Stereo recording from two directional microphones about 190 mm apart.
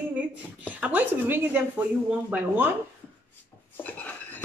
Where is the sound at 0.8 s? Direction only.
10° right (ahead or behind).